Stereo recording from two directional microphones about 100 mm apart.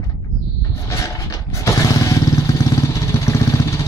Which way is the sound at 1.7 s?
35° left (ahead or behind).